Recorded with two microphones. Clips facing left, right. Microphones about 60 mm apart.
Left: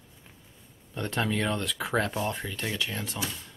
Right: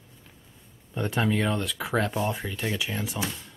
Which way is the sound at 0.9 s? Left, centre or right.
Centre.